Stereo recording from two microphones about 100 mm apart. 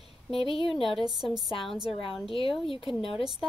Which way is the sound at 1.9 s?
65° left (ahead or behind).